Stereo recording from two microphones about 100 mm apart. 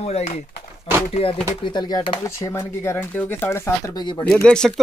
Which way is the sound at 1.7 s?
50° left (ahead or behind).